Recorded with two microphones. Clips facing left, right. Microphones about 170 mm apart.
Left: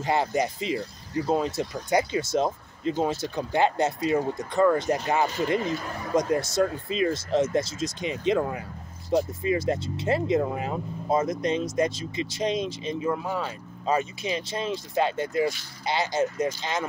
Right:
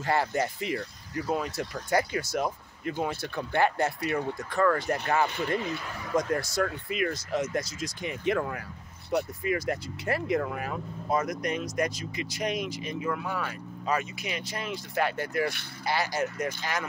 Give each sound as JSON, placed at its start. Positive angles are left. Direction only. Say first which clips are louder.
{"t": 0.0, "sound": "speech", "louder": "left 2 dB", "side_deg": 20}